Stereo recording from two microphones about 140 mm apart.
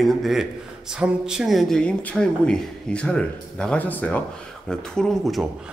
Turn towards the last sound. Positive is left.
turn(degrees=0)  # may be behind; listen again after turning